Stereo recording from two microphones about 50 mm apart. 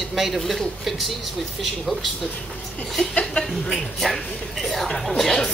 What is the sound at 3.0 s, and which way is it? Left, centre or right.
Speech, left.